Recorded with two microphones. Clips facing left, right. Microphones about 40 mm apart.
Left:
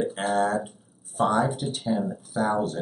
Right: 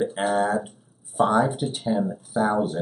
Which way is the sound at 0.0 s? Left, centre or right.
Centre.